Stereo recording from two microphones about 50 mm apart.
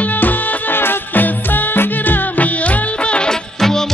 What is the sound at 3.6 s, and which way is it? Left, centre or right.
Music, centre.